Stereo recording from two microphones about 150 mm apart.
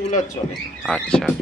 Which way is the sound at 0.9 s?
5° left (ahead or behind).